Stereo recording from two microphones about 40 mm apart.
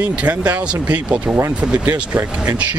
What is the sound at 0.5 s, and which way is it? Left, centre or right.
Speech, right.